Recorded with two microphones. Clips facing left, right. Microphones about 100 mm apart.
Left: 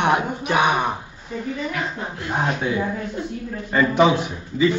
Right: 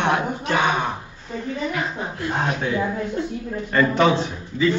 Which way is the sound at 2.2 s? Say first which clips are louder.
Left 1 dB; 20° left (ahead or behind).